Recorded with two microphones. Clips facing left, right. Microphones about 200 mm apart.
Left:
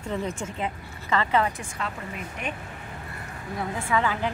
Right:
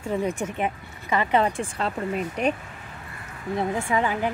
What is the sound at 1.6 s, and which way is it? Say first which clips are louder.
Speech: right 7 dB; 30° right (ahead or behind).